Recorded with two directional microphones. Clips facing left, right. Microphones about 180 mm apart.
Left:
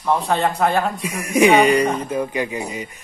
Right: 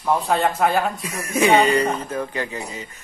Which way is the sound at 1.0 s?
15° left (ahead or behind).